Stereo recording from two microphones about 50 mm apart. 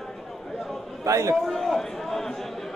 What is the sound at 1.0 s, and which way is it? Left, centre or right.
Speech, right.